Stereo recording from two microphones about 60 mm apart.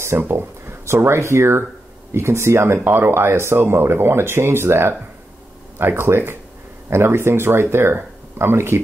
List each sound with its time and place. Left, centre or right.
0.2 s speech: right